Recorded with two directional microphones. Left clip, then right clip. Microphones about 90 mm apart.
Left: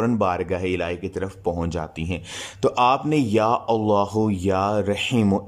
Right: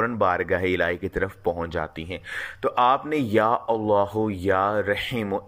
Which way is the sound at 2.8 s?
30° left (ahead or behind).